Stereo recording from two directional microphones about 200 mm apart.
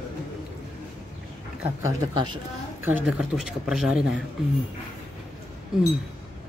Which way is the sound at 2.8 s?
5° right (ahead or behind).